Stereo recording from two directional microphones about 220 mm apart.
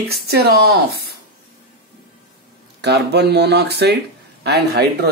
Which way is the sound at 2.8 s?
50° right (ahead or behind).